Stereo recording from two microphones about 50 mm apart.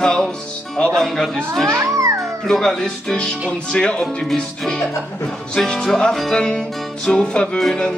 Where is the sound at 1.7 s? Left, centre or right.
Right.